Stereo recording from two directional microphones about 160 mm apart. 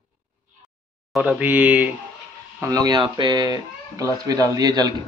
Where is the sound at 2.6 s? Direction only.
20° right (ahead or behind).